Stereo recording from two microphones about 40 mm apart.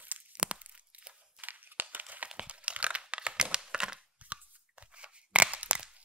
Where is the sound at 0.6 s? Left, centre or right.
Right.